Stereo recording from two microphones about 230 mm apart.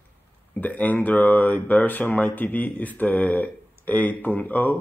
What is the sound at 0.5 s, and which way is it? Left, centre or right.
Speech, centre.